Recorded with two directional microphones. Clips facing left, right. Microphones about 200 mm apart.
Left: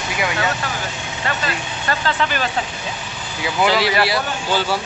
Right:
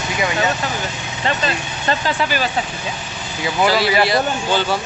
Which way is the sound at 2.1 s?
10° right (ahead or behind).